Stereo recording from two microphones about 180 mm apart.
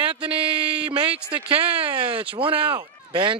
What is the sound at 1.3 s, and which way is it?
Speech, 30° right (ahead or behind).